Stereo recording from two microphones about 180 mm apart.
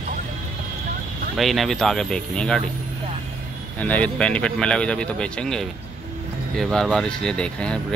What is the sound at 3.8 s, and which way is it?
A man's voice, 10° left (ahead or behind).